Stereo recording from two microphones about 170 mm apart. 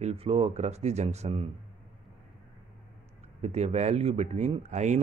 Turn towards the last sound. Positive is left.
turn(degrees=-45)  # may be behind; listen again after turning